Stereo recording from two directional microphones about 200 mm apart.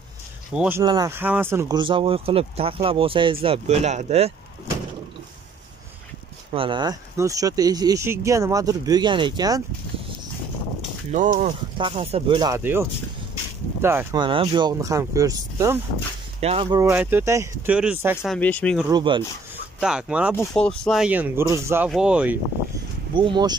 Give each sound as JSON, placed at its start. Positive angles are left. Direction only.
{"t": 0.5, "sound": "speech", "side_deg": -10}
{"t": 0.8, "sound": "speech", "side_deg": -20}
{"t": 6.5, "sound": "speech", "side_deg": -25}
{"t": 11.1, "sound": "speech", "side_deg": -35}
{"t": 14.1, "sound": "speech", "side_deg": -25}
{"t": 16.3, "sound": "speech", "side_deg": -30}
{"t": 16.9, "sound": "speech", "side_deg": -10}
{"t": 18.9, "sound": "speech", "side_deg": -20}
{"t": 19.5, "sound": "speech", "side_deg": -5}
{"t": 20.3, "sound": "speech", "side_deg": 5}
{"t": 23.1, "sound": "speech", "side_deg": -25}